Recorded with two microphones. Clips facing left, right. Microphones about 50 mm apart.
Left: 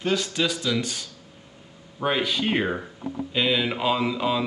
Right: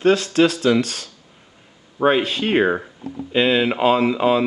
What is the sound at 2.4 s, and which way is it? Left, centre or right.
Speech, right.